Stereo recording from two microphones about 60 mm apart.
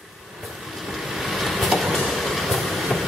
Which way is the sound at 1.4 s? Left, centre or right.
Centre.